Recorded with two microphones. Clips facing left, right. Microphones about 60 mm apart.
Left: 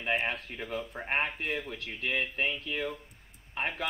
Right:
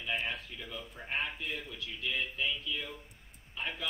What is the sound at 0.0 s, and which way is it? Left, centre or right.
Speech, left.